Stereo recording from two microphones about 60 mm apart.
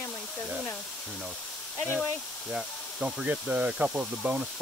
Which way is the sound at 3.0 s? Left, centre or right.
Centre.